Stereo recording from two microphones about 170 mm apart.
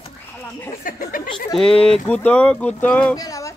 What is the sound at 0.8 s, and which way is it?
Speech, 55° left (ahead or behind).